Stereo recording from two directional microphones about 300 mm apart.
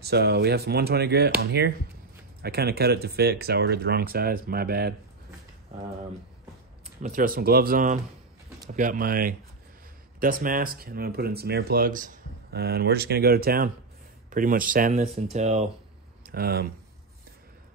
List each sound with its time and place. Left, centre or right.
0.0 s speech: right
7.0 s speech: right